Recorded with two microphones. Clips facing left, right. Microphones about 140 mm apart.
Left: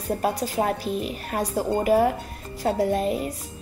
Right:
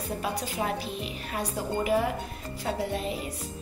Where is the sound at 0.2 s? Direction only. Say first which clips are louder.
Left 6 dB; 45° left (ahead or behind).